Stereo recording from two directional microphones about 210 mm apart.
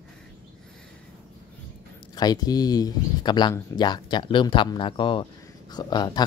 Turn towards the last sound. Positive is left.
turn(degrees=20)  # may be behind; listen again after turning